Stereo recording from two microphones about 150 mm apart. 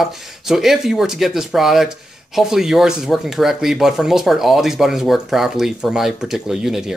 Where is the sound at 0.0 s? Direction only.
Centre (ahead or behind).